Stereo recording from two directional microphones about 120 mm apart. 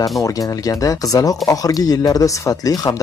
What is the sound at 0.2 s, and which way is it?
Speech, 30° left (ahead or behind).